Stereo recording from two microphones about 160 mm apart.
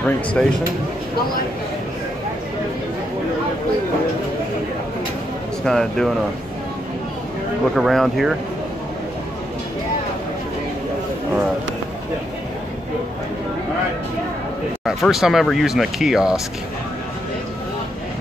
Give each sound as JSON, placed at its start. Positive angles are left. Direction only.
{"t": 0.0, "sound": "speech", "side_deg": 5}
{"t": 5.7, "sound": "speech", "side_deg": 5}
{"t": 7.7, "sound": "speech", "side_deg": 0}
{"t": 14.9, "sound": "speech", "side_deg": 0}